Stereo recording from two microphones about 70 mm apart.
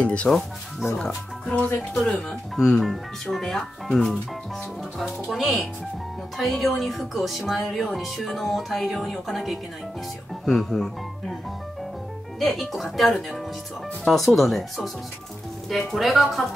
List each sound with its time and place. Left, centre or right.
0.0 s speech: centre
0.3 s speech: centre
0.9 s speech: centre
12.4 s speech: centre
15.9 s speech: centre